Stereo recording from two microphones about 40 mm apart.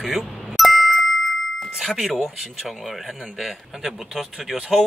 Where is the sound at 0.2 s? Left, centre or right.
Centre.